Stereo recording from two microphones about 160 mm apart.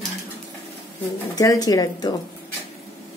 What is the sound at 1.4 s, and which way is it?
Speech, 25° left (ahead or behind).